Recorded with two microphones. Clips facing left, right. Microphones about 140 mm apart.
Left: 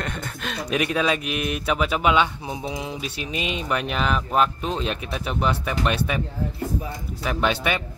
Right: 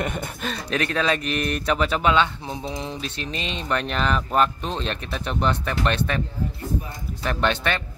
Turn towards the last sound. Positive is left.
turn(degrees=10)  # may be behind; listen again after turning